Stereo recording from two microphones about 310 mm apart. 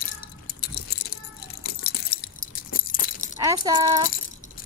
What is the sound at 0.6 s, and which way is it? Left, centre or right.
Keys jangling, left.